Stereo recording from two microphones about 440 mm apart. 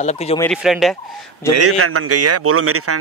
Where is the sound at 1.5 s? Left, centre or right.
Right.